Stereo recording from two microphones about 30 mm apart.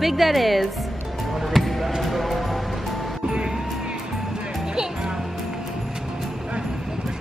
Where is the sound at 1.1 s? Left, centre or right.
Centre.